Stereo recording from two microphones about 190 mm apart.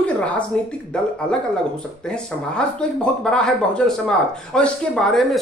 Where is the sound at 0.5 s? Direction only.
5° left (ahead or behind).